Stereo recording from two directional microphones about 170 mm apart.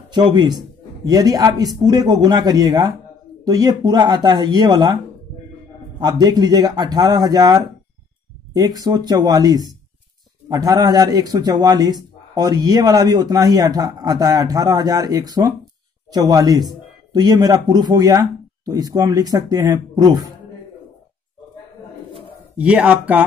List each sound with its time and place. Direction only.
0.1 s a man's voice: 25° right (ahead or behind)
5.9 s a man's voice: 25° right (ahead or behind)
22.6 s speech: 5° right (ahead or behind)